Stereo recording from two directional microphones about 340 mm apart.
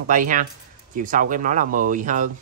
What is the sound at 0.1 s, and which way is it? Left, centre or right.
Speech, right.